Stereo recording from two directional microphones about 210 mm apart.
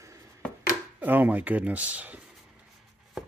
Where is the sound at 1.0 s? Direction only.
10° right (ahead or behind).